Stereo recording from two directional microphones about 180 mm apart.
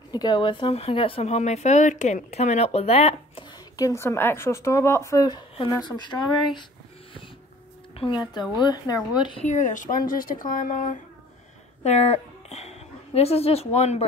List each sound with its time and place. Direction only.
0.1 s speech: 25° left (ahead or behind)
3.7 s speech: 15° left (ahead or behind)
8.0 s speech: 25° left (ahead or behind)
9.4 s a woman's voice: 45° left (ahead or behind)